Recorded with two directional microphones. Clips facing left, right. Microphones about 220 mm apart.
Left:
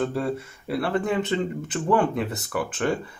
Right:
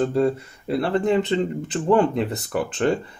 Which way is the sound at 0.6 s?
25° right (ahead or behind).